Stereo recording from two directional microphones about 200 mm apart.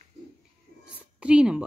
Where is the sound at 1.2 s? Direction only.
5° right (ahead or behind).